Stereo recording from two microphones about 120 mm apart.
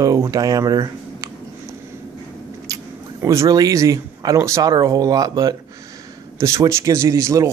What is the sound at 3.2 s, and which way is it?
Speech, 25° right (ahead or behind).